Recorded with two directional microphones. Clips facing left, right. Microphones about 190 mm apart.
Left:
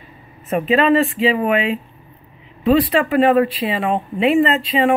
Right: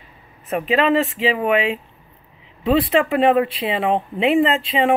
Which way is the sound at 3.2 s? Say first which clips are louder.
Left 6 dB; 25° right (ahead or behind).